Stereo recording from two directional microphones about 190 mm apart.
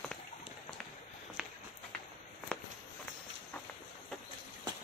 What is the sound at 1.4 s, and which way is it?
Walk, 5° right (ahead or behind).